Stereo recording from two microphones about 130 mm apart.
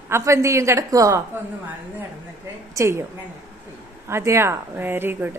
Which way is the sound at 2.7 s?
25° right (ahead or behind).